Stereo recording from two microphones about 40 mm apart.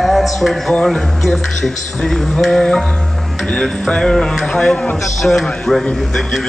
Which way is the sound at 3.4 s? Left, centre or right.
Left.